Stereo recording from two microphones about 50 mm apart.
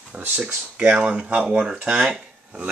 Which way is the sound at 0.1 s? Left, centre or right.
Right.